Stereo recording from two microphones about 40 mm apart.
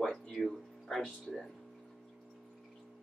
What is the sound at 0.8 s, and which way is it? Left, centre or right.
Music, centre.